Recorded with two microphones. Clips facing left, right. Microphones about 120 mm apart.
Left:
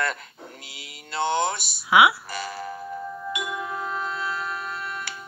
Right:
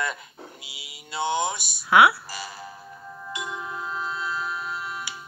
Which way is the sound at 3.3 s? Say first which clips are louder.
Even; 65° left (ahead or behind).